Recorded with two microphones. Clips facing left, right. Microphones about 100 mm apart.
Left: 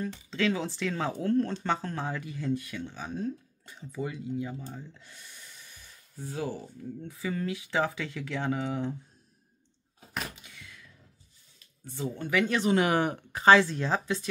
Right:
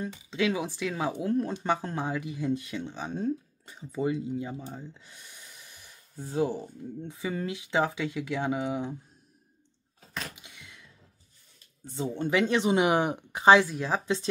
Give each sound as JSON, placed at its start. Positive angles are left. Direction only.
{"t": 0.3, "sound": "speech", "side_deg": -15}
{"t": 6.1, "sound": "speech", "side_deg": -25}
{"t": 10.3, "sound": "a sound", "side_deg": -20}
{"t": 11.8, "sound": "speech", "side_deg": -25}